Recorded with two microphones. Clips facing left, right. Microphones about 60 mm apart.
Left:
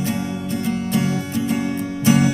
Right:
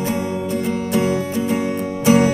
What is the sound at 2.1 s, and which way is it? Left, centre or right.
Music, right.